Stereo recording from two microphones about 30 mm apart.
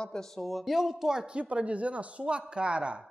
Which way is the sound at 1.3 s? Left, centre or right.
Right.